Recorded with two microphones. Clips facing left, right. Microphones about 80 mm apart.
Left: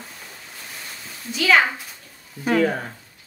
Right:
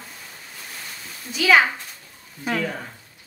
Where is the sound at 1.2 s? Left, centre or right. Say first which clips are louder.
Right 1 dB; centre.